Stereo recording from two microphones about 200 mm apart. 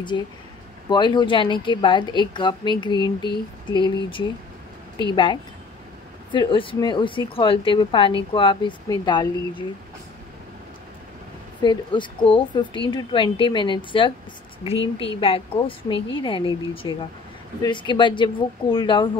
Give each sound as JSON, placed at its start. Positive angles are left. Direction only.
{"t": 0.1, "sound": "a woman's voice", "side_deg": 20}
{"t": 11.6, "sound": "a woman's voice", "side_deg": 20}